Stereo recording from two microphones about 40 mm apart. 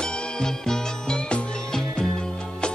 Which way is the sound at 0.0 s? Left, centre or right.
Centre.